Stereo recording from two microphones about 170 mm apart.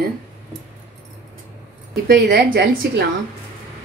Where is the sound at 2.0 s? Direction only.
70° right (ahead or behind).